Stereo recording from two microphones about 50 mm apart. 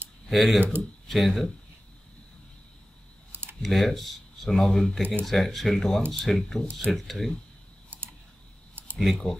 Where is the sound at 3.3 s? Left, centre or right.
Right.